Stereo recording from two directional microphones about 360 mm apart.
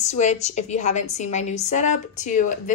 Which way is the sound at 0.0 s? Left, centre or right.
Centre.